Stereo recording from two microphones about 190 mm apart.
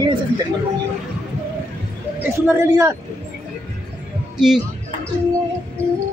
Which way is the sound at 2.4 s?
15° right (ahead or behind).